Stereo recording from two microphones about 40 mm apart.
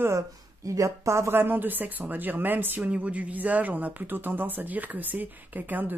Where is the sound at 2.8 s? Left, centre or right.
Right.